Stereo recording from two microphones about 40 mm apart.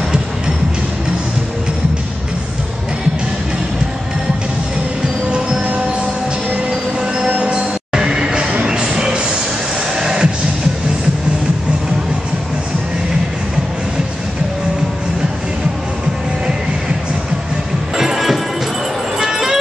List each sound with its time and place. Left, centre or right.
7.2 s music: right
7.5 s music: centre
17.9 s music: centre
19.1 s vehicle: centre